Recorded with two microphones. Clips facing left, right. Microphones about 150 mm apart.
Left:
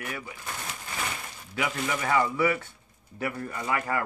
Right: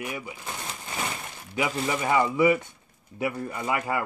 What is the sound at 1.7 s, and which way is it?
Speech, 20° right (ahead or behind).